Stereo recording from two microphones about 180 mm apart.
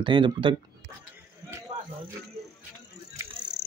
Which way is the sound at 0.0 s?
30° right (ahead or behind).